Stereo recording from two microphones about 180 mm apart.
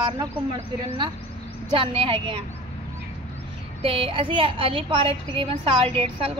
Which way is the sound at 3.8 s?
30° right (ahead or behind).